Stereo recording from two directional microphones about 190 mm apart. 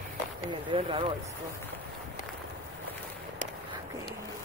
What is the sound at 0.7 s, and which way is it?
Speech, 25° right (ahead or behind).